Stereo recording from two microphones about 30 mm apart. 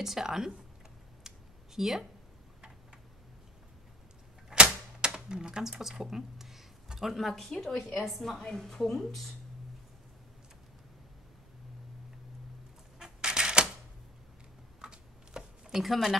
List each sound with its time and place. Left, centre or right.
0.0 s speech: centre
1.3 s a sound: centre
1.8 s speech: centre
4.5 s typewriter: right
5.0 s typing: right
5.6 s speech: centre
5.9 s a sound: centre
7.2 s a woman's voice: centre
8.4 s speech: centre
13.2 s typewriter: right
14.8 s a sound: right
15.8 s a woman's voice: centre